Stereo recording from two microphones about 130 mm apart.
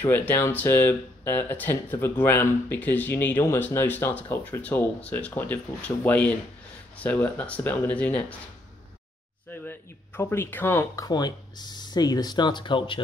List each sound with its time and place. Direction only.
0.0 s speech: 15° left (ahead or behind)
9.5 s speech: 15° left (ahead or behind); by 13.0 s 40° left (ahead or behind)